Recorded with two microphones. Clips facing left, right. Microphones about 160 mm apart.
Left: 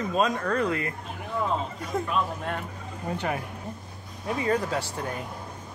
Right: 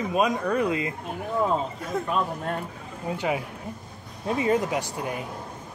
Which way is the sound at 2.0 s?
35° right (ahead or behind).